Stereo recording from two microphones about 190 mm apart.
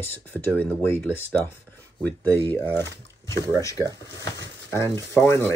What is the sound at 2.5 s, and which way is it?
Speech, 10° left (ahead or behind).